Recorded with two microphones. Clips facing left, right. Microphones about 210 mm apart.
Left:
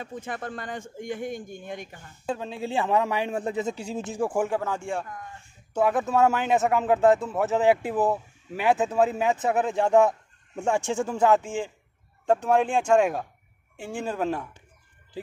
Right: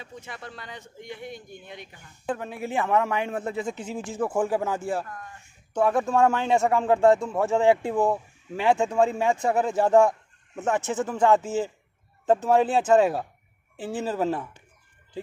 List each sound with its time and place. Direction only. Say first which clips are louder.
0.0 s speech: left 6 dB; 50° left (ahead or behind)
2.2 s a man's voice: even; 15° left (ahead or behind)
4.5 s speech: right 2 dB; 5° right (ahead or behind)
10.6 s a man's voice: even; 15° left (ahead or behind); by 14.5 s 5° right (ahead or behind)